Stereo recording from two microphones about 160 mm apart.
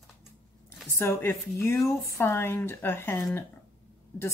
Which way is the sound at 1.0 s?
15° left (ahead or behind).